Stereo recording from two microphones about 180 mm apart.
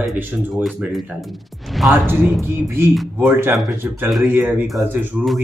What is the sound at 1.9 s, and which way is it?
Speech, 10° right (ahead or behind).